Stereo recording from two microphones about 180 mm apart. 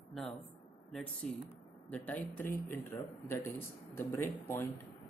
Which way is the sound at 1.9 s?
10° left (ahead or behind).